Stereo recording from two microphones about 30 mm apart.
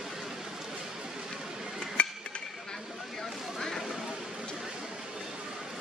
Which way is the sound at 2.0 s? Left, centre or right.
Left.